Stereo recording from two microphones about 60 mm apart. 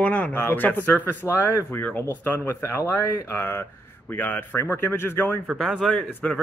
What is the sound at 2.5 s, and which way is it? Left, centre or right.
Speech, left.